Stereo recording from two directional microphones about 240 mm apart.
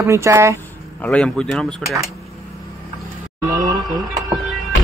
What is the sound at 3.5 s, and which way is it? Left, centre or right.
Speech, centre.